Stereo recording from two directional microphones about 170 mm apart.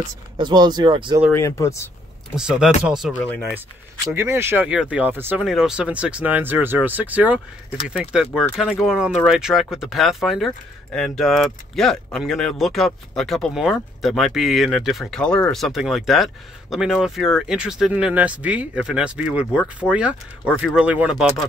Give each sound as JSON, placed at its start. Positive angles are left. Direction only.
{"t": 0.4, "sound": "speech", "side_deg": -25}
{"t": 1.3, "sound": "speech", "side_deg": 15}
{"t": 2.3, "sound": "speech", "side_deg": -5}
{"t": 3.2, "sound": "speech", "side_deg": 10}
{"t": 4.1, "sound": "speech", "side_deg": -15}